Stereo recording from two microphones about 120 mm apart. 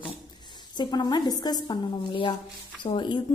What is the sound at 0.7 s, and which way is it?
A woman's voice, 35° left (ahead or behind).